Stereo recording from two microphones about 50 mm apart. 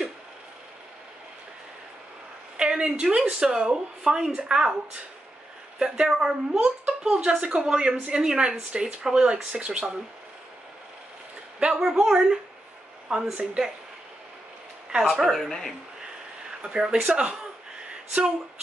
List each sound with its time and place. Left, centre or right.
2.5 s a sound: centre
3.3 s speech: centre
5.8 s speech: centre
6.6 s speech: right
11.6 s speech: centre
14.9 s speech: centre
15.2 s speech: centre
16.6 s speech: centre